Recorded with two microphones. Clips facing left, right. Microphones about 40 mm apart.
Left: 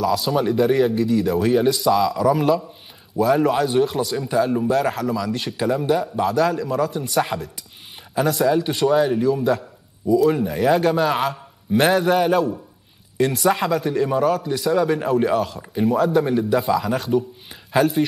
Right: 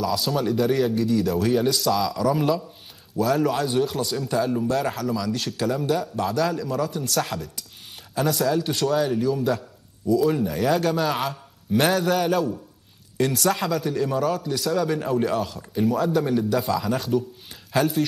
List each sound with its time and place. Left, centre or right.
0.0 s a man's voice: centre
17.7 s speech: left